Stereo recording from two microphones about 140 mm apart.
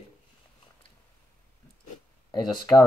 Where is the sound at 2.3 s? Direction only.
30° left (ahead or behind).